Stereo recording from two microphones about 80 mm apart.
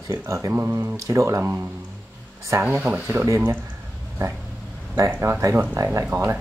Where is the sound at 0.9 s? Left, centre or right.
Right.